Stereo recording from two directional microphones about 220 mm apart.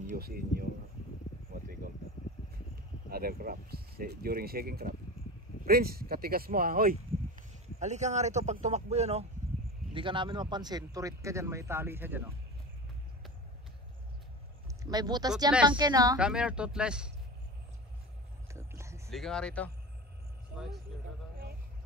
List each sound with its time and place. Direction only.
0.0 s speech: 40° right (ahead or behind)
3.1 s speech: 45° right (ahead or behind); by 12.3 s 10° right (ahead or behind)
14.7 s speech: 15° right (ahead or behind)
16.2 s a man's voice: 5° right (ahead or behind)
18.5 s a sound: 10° right (ahead or behind)
19.0 s a man's voice: centre (ahead or behind)